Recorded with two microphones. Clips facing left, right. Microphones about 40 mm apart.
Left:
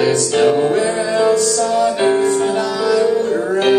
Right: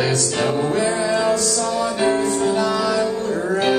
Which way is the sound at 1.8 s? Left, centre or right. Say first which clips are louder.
Left 4 dB; left.